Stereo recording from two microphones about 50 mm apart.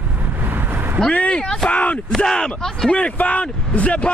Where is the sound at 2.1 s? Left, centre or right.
Centre.